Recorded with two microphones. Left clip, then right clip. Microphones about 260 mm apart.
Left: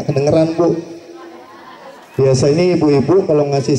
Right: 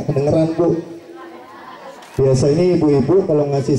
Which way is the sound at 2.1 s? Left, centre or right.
Centre.